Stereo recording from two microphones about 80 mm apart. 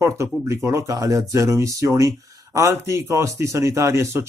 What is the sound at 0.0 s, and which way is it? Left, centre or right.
Speech, right.